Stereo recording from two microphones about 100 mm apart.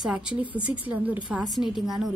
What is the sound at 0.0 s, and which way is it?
A woman's voice, 10° right (ahead or behind).